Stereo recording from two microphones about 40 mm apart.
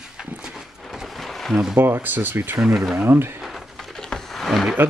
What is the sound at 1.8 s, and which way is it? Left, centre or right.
Speech, right.